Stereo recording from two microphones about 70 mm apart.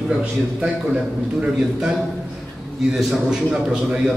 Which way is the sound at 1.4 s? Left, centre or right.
Centre.